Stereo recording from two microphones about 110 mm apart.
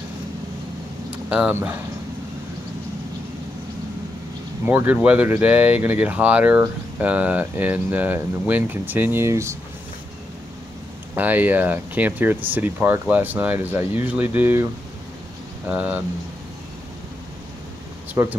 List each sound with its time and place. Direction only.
1.5 s speech: 20° right (ahead or behind)
4.6 s speech: 15° right (ahead or behind)
11.1 s speech: 15° right (ahead or behind)
15.7 s speech: 15° right (ahead or behind)
18.1 s speech: 20° right (ahead or behind)